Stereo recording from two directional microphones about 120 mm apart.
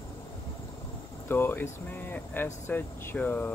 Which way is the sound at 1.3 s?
15° left (ahead or behind).